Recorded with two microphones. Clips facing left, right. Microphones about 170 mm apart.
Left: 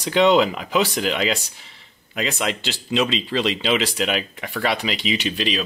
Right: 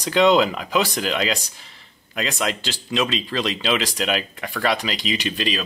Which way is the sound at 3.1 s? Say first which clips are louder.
Left 2 dB; 40° right (ahead or behind).